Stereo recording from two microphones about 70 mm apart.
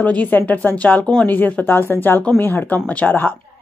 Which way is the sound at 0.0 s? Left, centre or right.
Left.